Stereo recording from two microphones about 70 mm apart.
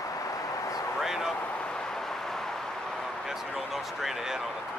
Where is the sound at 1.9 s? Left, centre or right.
Centre.